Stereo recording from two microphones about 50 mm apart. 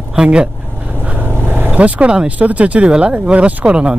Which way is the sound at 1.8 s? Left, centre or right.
Right.